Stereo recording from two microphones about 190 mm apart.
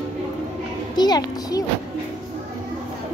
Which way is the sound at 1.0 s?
20° left (ahead or behind).